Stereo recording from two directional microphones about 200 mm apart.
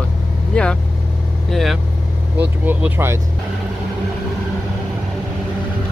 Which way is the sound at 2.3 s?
10° right (ahead or behind).